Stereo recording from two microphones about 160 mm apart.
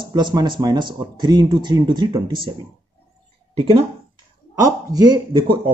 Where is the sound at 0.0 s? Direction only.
30° right (ahead or behind).